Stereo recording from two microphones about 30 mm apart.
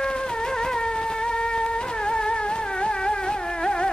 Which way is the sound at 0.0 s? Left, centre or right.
Left.